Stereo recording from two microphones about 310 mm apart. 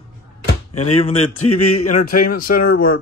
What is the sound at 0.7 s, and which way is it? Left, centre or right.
Door, left.